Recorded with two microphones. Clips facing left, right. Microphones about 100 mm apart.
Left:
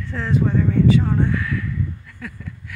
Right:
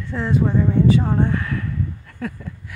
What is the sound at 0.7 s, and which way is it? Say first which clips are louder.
Speech: left 1 dB; 30° right (ahead or behind).